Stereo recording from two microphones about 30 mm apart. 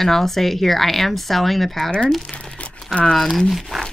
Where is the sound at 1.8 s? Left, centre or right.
Left.